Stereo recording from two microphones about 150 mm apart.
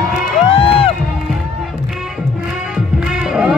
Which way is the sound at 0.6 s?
40° left (ahead or behind).